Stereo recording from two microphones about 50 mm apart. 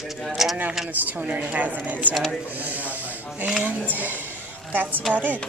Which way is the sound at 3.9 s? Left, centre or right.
Right.